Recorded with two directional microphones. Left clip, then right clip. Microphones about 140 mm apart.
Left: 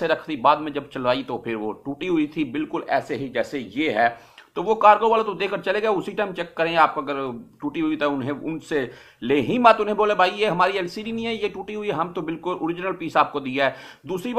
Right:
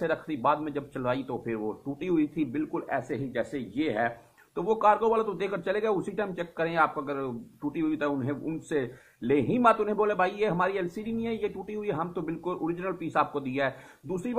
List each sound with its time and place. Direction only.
0.0 s speech: 10° left (ahead or behind)
2.0 s speech: 10° left (ahead or behind)
4.7 s speech: 10° left (ahead or behind)